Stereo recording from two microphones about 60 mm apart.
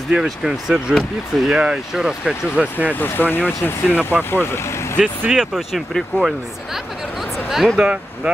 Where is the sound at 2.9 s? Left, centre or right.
Left.